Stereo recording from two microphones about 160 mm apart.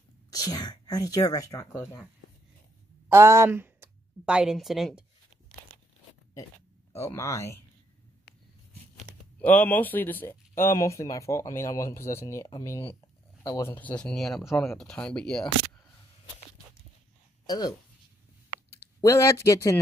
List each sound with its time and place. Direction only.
0.3 s speech: 25° left (ahead or behind)
3.1 s a woman's voice: 15° right (ahead or behind); by 5.0 s centre (ahead or behind)
7.0 s speech: 15° left (ahead or behind)
9.1 s a sound: 5° left (ahead or behind)
9.4 s speech: 10° left (ahead or behind)
17.5 s speech: 25° left (ahead or behind)